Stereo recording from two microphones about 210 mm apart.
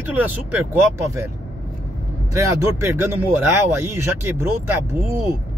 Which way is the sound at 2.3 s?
15° right (ahead or behind).